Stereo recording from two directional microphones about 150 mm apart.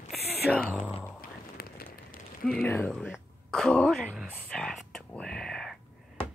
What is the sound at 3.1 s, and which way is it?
Throat clearing, 5° left (ahead or behind).